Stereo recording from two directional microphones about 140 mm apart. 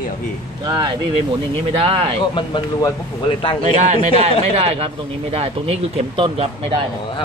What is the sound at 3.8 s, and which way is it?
Speech, 55° right (ahead or behind).